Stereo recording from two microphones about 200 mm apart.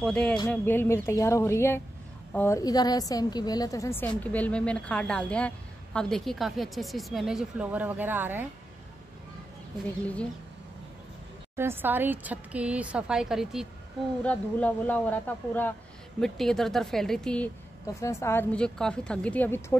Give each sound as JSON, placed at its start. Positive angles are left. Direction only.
{"t": 0.0, "sound": "a woman's voice", "side_deg": 5}
{"t": 11.5, "sound": "a woman's voice", "side_deg": -10}
{"t": 17.8, "sound": "a woman's voice", "side_deg": 15}